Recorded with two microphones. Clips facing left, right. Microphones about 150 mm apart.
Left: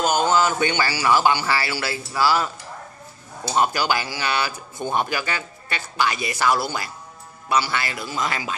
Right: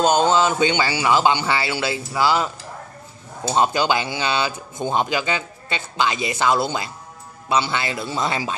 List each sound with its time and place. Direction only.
0.0 s a man's voice: 25° right (ahead or behind)